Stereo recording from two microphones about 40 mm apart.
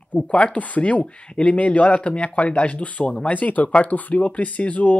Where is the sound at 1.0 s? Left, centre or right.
Left.